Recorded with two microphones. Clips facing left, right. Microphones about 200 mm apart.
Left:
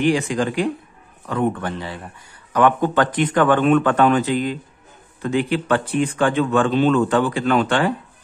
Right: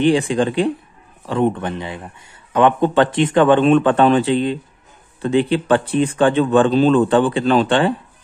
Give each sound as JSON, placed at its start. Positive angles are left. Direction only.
{"t": 0.0, "sound": "speech", "side_deg": -30}